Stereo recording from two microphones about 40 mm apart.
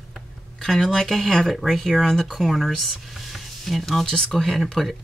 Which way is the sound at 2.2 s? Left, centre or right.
Centre.